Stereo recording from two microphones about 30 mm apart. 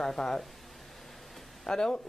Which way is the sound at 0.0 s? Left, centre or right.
Left.